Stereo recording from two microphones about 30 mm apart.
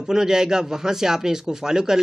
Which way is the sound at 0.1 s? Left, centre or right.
Centre.